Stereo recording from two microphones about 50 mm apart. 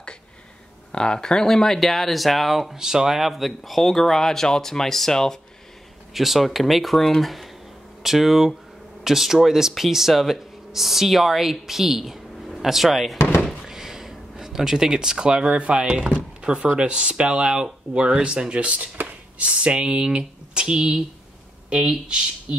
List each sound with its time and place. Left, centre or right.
0.9 s speech: centre
6.1 s speech: centre
13.5 s a sound: centre
16.7 s speech: right